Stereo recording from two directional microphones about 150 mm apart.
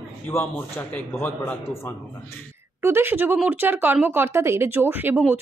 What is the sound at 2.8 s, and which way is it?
Speech, 15° right (ahead or behind).